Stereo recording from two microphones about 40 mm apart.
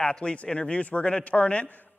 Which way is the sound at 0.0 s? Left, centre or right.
Left.